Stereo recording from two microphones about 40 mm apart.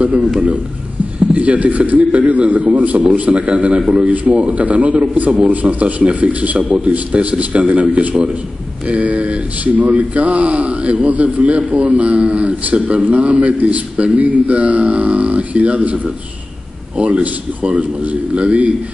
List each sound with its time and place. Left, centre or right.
1.3 s a man's voice: right
17.0 s speech: right